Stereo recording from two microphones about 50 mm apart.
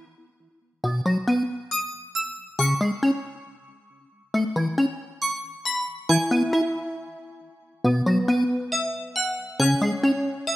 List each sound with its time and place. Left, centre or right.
0.7 s music: centre
4.3 s music: centre
10.1 s music: centre